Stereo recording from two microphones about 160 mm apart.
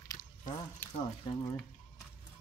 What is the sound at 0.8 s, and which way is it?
Speech, 10° left (ahead or behind).